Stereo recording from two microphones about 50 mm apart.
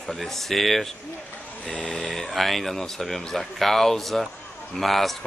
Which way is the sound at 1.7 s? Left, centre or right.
Left.